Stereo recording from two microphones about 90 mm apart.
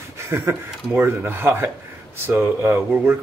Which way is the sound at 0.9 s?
25° right (ahead or behind).